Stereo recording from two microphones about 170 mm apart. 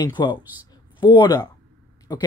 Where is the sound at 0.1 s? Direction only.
25° left (ahead or behind).